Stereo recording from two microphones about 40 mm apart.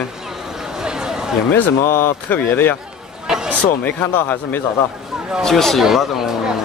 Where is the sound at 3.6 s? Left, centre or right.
Left.